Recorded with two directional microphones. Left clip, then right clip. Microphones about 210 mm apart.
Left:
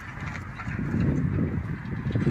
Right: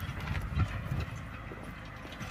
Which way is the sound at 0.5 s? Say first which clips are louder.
Left 7 dB; 50° right (ahead or behind).